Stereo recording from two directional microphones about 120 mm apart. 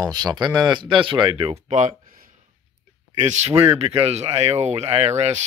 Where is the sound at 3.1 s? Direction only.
65° right (ahead or behind).